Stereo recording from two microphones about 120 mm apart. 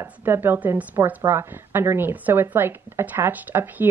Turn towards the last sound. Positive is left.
turn(degrees=-15)  # may be behind; listen again after turning